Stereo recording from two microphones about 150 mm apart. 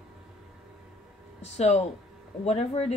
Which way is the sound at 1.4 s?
45° left (ahead or behind).